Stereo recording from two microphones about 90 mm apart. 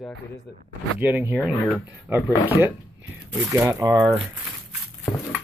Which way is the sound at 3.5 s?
35° right (ahead or behind).